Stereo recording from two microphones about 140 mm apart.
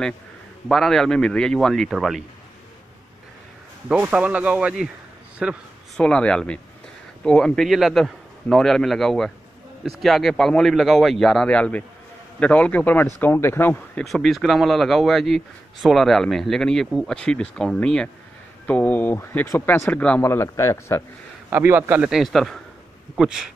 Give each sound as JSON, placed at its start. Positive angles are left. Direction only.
{"t": 0.7, "sound": "a man's voice", "side_deg": 0}
{"t": 3.9, "sound": "a man's voice", "side_deg": -10}
{"t": 5.9, "sound": "a man's voice", "side_deg": 5}
{"t": 14.0, "sound": "a man's voice", "side_deg": 0}
{"t": 21.5, "sound": "a man's voice", "side_deg": -15}